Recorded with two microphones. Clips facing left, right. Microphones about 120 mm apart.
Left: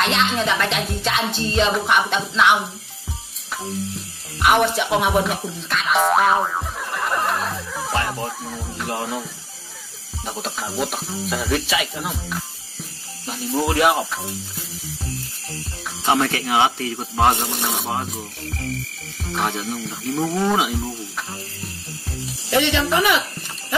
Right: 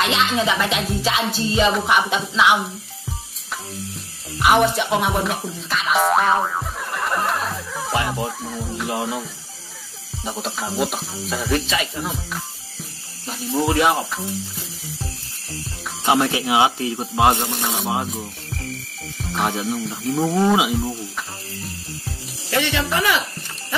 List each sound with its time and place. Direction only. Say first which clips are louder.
0.0 s music: right 1 dB; centre (ahead or behind)
3.9 s speech: left 1 dB; centre (ahead or behind)
7.9 s music: right 2 dB; 5° right (ahead or behind)
16.1 s speech: right 1 dB; 10° right (ahead or behind)
17.6 s music: right 1 dB; centre (ahead or behind)
19.3 s speech: right 2 dB; 10° right (ahead or behind)
20.1 s music: right 3 dB; 15° right (ahead or behind)
22.5 s speech: left 3 dB; 15° left (ahead or behind)